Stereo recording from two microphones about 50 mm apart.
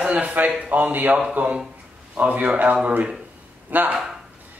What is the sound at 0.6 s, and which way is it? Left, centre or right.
A man's voice, right.